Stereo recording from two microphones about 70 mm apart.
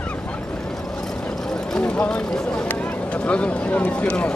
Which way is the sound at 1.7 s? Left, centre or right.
Centre.